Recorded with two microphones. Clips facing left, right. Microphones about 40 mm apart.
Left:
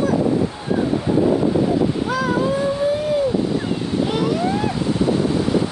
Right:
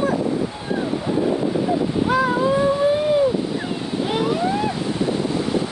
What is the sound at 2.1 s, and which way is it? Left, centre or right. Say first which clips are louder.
Ocean: right 2 dB; right.